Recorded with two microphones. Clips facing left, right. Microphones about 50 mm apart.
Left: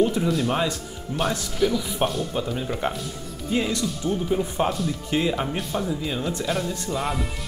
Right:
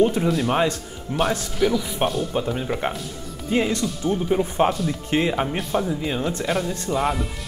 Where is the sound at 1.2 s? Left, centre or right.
Centre.